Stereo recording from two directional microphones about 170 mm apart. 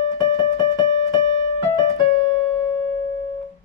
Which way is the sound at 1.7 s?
25° left (ahead or behind).